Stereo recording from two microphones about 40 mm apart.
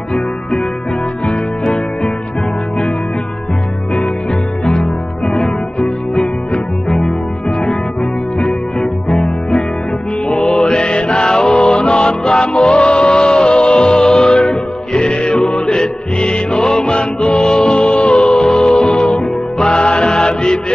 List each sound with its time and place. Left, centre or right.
4.6 s music: left